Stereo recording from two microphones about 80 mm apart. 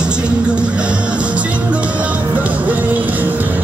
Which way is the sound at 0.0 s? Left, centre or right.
Centre.